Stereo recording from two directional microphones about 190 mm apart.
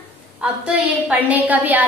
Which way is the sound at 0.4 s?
5° right (ahead or behind).